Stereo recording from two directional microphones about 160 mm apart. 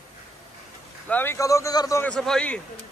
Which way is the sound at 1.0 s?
10° left (ahead or behind).